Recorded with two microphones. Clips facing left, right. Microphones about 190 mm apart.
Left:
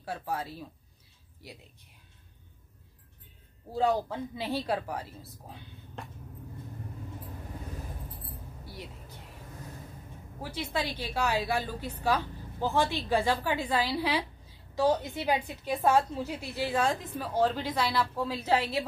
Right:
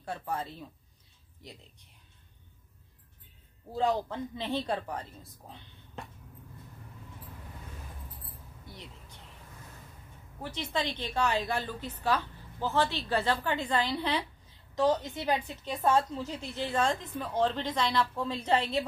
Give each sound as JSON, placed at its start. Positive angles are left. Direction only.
{"t": 0.0, "sound": "a woman's voice", "side_deg": 5}
{"t": 3.7, "sound": "a woman's voice", "side_deg": 10}
{"t": 10.4, "sound": "a woman's voice", "side_deg": 10}